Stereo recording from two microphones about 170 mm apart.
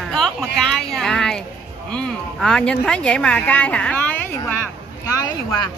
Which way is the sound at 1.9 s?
5° left (ahead or behind).